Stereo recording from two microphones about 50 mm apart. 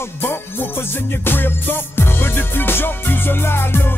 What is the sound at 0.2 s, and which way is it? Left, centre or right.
Music, left.